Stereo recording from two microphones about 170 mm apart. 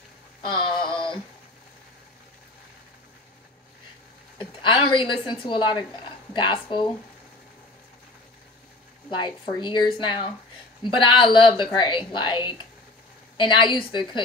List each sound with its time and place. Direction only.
0.5 s synthetic singing: 30° left (ahead or behind)
4.4 s a woman's voice: 30° left (ahead or behind)
9.2 s a woman's voice: 25° left (ahead or behind)